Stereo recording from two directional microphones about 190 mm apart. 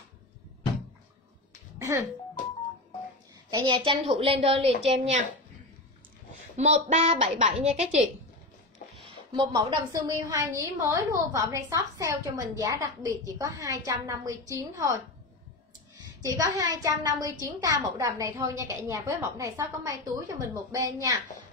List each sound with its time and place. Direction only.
1.8 s music: 15° right (ahead or behind)
3.4 s a woman's voice: 25° right (ahead or behind)
6.5 s a woman's voice: 35° right (ahead or behind)
9.0 s a woman's voice: 25° right (ahead or behind)
16.0 s a woman's voice: 15° right (ahead or behind)